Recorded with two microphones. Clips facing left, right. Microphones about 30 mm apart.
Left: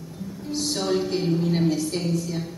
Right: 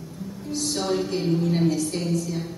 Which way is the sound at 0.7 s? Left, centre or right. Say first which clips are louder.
Left 1 dB; centre.